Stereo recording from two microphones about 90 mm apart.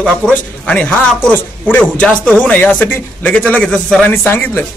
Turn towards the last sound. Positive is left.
turn(degrees=25)  # may be behind; listen again after turning